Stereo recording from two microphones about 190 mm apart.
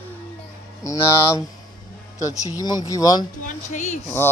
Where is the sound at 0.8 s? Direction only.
20° left (ahead or behind).